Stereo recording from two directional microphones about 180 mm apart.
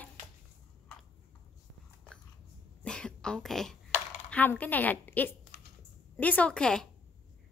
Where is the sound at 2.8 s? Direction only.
5° left (ahead or behind).